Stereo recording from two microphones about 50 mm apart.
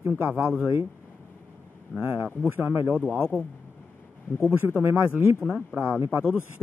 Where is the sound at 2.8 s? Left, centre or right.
Right.